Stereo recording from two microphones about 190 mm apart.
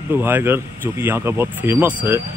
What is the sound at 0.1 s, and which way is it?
Speech, 10° right (ahead or behind).